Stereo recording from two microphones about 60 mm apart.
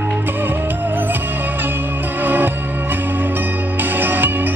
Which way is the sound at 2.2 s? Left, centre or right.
Right.